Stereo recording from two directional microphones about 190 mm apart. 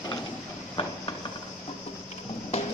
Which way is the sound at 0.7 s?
25° left (ahead or behind).